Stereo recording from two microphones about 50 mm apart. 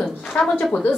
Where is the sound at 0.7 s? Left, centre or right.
Left.